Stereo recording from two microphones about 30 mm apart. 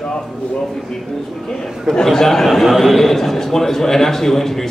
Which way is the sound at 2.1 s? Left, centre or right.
Centre.